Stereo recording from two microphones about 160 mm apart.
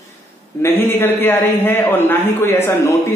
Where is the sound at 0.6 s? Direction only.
15° left (ahead or behind).